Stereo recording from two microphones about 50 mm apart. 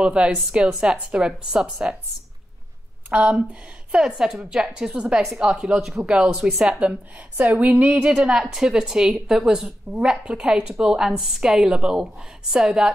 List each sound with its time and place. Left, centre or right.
0.0 s speech: right
3.1 s speech: right
3.9 s a woman's voice: centre
6.7 s speech: right
8.2 s a woman's voice: centre